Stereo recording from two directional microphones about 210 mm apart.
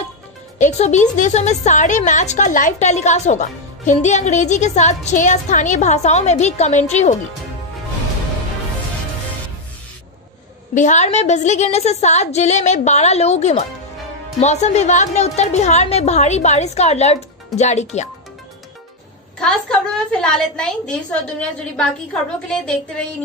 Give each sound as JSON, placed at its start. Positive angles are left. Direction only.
{"t": 0.6, "sound": "a woman's voice", "side_deg": 35}
{"t": 10.7, "sound": "a woman's voice", "side_deg": 35}
{"t": 19.4, "sound": "a woman's voice", "side_deg": 5}
{"t": 22.5, "sound": "a woman's voice", "side_deg": 5}